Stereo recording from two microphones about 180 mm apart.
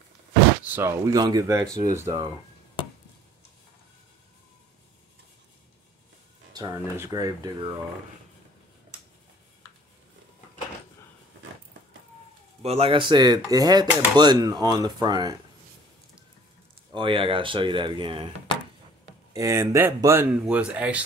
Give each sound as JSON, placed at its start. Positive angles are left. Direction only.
{"t": 0.7, "sound": "speech", "side_deg": -15}
{"t": 6.5, "sound": "speech", "side_deg": -20}
{"t": 12.6, "sound": "speech", "side_deg": -35}
{"t": 16.9, "sound": "speech", "side_deg": -30}
{"t": 19.3, "sound": "speech", "side_deg": -15}